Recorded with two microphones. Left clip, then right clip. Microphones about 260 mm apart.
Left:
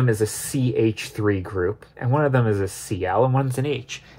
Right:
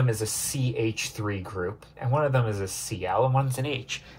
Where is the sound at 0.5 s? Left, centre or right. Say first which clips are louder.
Left 8 dB; left.